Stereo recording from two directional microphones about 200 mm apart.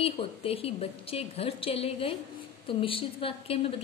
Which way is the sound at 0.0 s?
30° left (ahead or behind).